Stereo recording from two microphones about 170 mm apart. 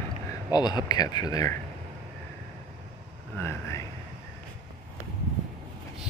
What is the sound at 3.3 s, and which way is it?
Speech, 15° left (ahead or behind).